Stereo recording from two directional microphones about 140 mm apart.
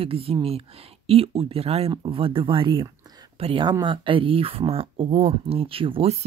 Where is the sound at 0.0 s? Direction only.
40° right (ahead or behind).